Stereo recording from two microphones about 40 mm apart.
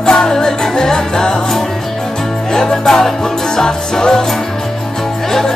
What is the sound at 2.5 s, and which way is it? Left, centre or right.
Music, centre.